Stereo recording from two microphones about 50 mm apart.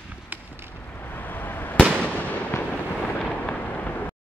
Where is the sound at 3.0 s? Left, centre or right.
Centre.